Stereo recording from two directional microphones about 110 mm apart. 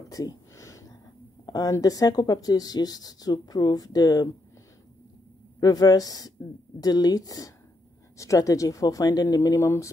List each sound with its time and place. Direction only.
0.1 s a sound: 30° left (ahead or behind)
1.4 s speech: 35° left (ahead or behind)
5.6 s speech: 35° left (ahead or behind)